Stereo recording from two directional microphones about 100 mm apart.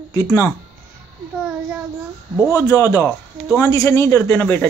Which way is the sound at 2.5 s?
30° left (ahead or behind).